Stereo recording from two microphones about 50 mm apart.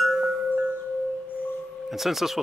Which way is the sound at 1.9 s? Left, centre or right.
Centre.